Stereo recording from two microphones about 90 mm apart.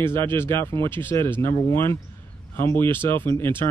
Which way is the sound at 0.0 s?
25° left (ahead or behind).